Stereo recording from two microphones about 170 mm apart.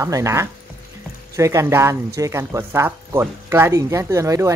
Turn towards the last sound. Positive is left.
turn(degrees=-20)  # may be behind; listen again after turning